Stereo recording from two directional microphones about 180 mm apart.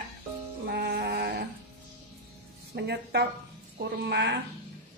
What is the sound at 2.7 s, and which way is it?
Speech, 70° right (ahead or behind).